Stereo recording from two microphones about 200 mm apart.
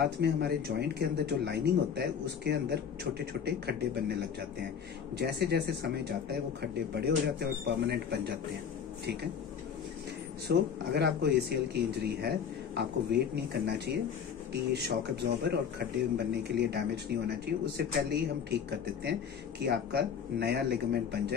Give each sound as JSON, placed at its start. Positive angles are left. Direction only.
{"t": 0.0, "sound": "speech", "side_deg": -55}
{"t": 10.5, "sound": "speech", "side_deg": -55}